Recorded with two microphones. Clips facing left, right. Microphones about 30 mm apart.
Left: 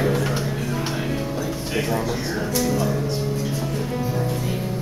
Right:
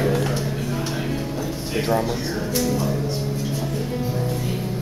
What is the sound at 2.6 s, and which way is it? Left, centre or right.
Music, centre.